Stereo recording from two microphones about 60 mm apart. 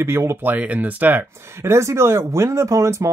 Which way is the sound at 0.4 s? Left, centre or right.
Right.